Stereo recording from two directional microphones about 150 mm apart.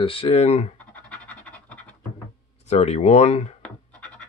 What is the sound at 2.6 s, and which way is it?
Speech, 45° left (ahead or behind).